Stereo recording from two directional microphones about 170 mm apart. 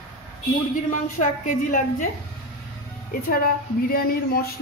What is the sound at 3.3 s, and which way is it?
Speech, 60° left (ahead or behind).